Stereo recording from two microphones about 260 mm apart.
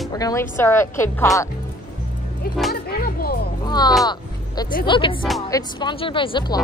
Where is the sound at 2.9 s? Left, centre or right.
Left.